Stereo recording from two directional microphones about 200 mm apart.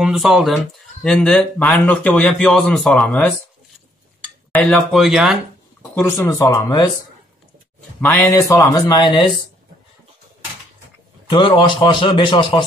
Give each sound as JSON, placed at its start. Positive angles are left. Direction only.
{"t": 0.0, "sound": "speech", "side_deg": 0}
{"t": 4.5, "sound": "speech", "side_deg": 5}
{"t": 5.8, "sound": "a sound", "side_deg": 15}
{"t": 6.1, "sound": "speech", "side_deg": 10}
{"t": 6.4, "sound": "a man's voice", "side_deg": 20}
{"t": 8.0, "sound": "speech", "side_deg": 10}
{"t": 11.2, "sound": "a man's voice", "side_deg": 25}